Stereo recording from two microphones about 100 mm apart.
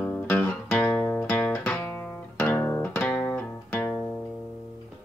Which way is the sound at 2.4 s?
20° left (ahead or behind).